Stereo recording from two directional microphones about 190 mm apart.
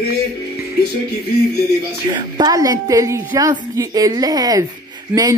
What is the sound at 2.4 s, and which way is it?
A woman's voice, 20° right (ahead or behind).